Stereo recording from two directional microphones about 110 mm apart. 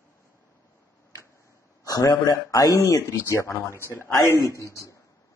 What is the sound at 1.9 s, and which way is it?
A man's voice, 35° left (ahead or behind).